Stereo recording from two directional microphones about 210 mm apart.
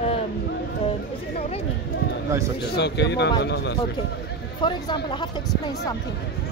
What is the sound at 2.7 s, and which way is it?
Speech, 55° left (ahead or behind).